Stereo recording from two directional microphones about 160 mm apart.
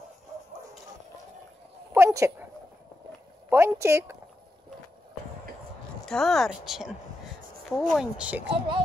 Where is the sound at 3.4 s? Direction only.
15° right (ahead or behind).